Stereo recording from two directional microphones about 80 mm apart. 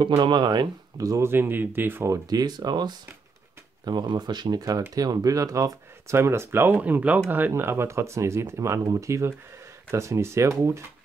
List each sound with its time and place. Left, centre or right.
0.0 s speech: right
0.9 s speech: right
1.2 s speech: right
2.2 s speech: right
6.7 s speech: centre; by 10.5 s right